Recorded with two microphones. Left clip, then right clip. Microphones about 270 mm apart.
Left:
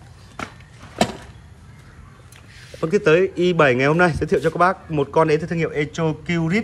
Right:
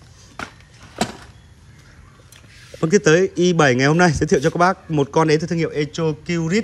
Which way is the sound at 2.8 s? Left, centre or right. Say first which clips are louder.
Right 1 dB; right.